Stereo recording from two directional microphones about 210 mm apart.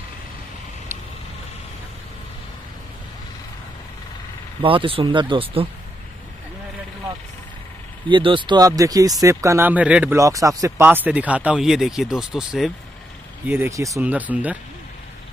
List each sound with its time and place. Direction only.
4.6 s speech: 25° right (ahead or behind)
8.1 s speech: 25° right (ahead or behind); by 12.7 s centre (ahead or behind)
13.5 s speech: 15° right (ahead or behind)